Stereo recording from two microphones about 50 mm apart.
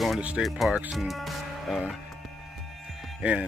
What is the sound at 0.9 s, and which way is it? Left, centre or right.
Music, centre.